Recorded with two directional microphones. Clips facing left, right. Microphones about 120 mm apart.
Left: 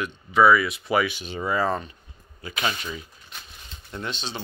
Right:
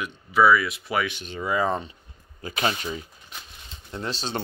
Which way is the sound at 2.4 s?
35° right (ahead or behind).